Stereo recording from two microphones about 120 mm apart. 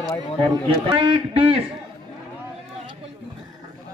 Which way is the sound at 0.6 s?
45° right (ahead or behind).